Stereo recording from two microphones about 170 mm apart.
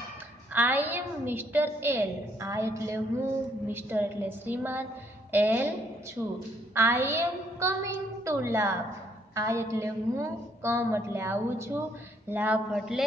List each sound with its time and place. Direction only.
0.5 s a woman's voice: 10° right (ahead or behind)
6.7 s a woman's voice: 15° right (ahead or behind)